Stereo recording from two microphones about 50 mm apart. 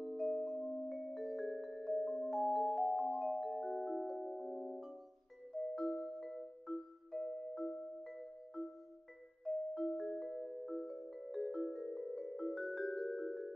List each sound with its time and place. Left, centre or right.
0.2 s music: centre
0.6 s music: centre
0.8 s music: centre
2.2 s music: centre
5.5 s music: centre
9.8 s music: centre